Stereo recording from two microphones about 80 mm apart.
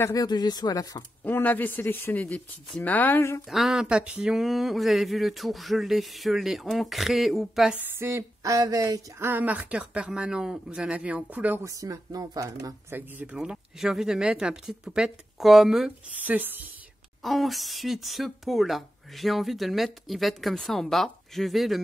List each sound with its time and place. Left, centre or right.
0.1 s speech: left
1.2 s a man's voice: left
3.2 s speech: left
3.4 s speech: centre
3.8 s speech: centre
8.0 s speech: right
9.2 s speech: right
11.6 s speech: right
12.9 s speech: right
13.4 s speech: centre
16.2 s speech: right
17.2 s speech: centre